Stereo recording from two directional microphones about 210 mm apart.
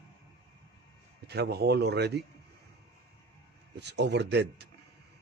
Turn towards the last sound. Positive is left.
turn(degrees=-55)  # may be behind; listen again after turning